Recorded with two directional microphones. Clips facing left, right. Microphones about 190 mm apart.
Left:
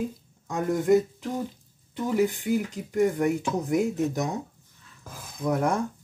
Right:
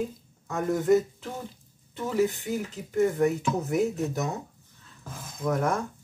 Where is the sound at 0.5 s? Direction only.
15° left (ahead or behind).